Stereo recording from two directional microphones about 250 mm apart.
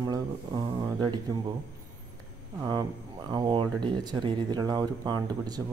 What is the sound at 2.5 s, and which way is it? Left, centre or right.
Speech, centre.